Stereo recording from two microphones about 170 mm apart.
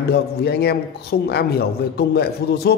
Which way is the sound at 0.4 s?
70° left (ahead or behind).